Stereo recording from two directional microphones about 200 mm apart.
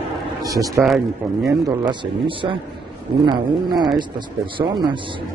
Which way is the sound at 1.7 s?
25° right (ahead or behind).